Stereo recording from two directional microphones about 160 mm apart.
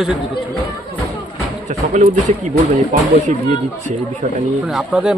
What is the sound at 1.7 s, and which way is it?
Speech, 50° right (ahead or behind).